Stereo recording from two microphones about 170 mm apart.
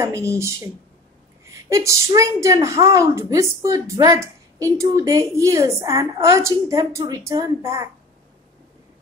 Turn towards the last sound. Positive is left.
turn(degrees=-20)  # may be behind; listen again after turning